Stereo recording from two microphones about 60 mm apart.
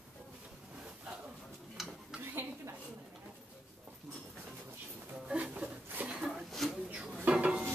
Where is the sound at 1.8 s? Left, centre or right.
Centre.